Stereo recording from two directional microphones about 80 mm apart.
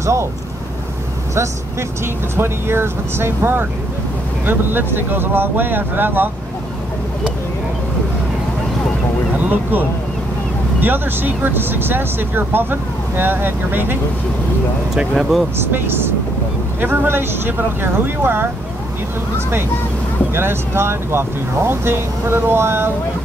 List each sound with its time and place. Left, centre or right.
0.0 s speech: right
1.3 s speech: right
9.4 s speech: right
15.0 s speech: centre
15.5 s speech: right
20.3 s speech: right